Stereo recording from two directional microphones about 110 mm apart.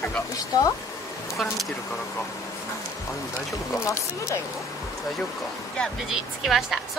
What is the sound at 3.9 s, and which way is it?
Speech, 30° left (ahead or behind).